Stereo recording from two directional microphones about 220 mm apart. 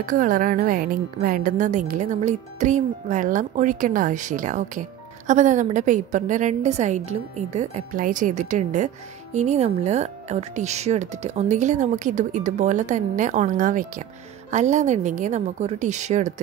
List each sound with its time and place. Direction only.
0.0 s a woman's voice: 35° right (ahead or behind)